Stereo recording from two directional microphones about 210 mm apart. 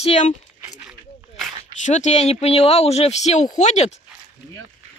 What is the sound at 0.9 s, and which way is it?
Snake, centre (ahead or behind).